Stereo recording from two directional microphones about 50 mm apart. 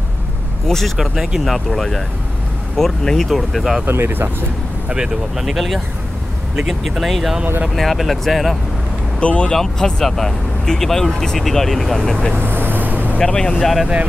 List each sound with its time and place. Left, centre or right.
0.7 s speech: centre
0.9 s speech: centre
1.4 s speech: centre
3.8 s speech: right
4.8 s speech: centre
9.2 s speech: left
9.5 s speech: centre
12.4 s vehicle: right
13.2 s speech: centre
13.6 s speech: centre